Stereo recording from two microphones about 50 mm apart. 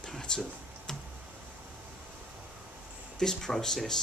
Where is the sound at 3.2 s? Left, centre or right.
Centre.